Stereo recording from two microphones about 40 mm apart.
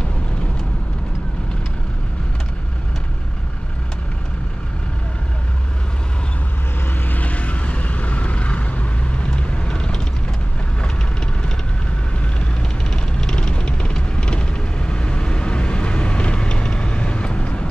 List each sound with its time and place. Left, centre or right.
7.1 s vehicle: left
12.9 s vehicle: centre